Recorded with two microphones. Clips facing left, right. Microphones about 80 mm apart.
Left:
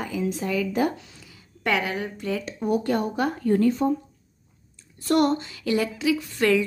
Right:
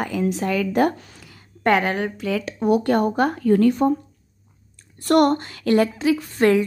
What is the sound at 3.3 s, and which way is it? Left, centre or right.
Speech, right.